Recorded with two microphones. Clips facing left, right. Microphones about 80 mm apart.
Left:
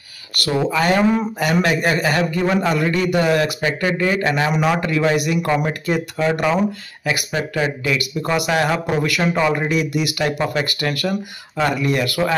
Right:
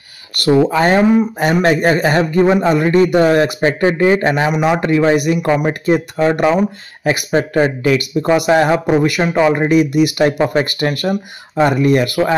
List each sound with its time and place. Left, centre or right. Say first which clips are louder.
0.5 s a man's voice: right 6 dB; right